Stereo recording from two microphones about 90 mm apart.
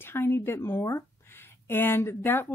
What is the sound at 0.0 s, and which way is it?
Speech, 25° left (ahead or behind).